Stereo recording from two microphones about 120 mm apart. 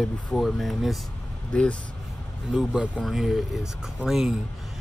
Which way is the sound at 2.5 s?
5° right (ahead or behind).